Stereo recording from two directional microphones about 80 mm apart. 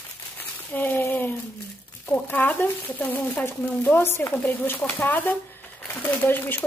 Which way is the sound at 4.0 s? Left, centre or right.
Left.